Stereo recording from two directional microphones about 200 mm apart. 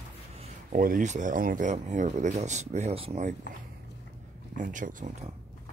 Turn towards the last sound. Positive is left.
turn(degrees=-40)  # may be behind; listen again after turning